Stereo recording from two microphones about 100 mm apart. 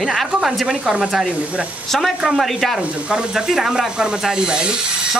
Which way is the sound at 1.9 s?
Centre (ahead or behind).